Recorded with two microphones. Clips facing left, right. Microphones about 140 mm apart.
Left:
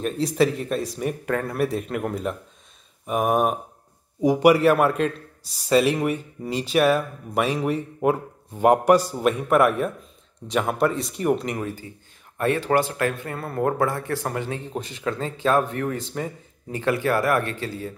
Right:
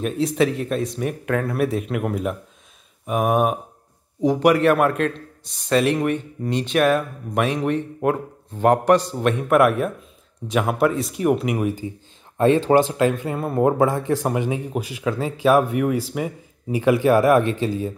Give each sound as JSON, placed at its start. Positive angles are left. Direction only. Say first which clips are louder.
{"t": 0.0, "sound": "speech", "louder": "right 1 dB", "side_deg": 0}
{"t": 4.2, "sound": "a man's voice", "louder": "even", "side_deg": 10}